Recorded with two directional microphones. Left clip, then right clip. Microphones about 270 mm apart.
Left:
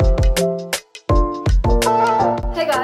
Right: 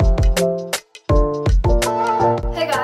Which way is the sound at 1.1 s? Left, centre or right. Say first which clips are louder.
Right 1 dB; centre.